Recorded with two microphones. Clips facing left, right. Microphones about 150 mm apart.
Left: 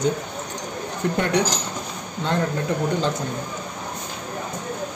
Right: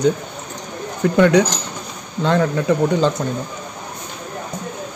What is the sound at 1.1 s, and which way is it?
Speech, 90° right.